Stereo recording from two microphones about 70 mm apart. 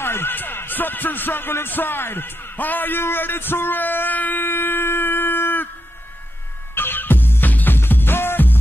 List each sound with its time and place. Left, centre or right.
0.0 s speech: left
6.7 s music: left